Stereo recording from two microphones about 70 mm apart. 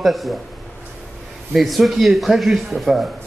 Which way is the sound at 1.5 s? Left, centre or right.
Centre.